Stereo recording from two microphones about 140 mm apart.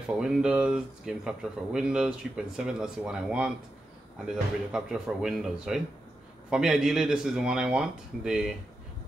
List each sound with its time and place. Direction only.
0.1 s speech: 5° right (ahead or behind)